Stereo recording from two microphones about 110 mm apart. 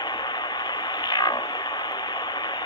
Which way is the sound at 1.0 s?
40° left (ahead or behind).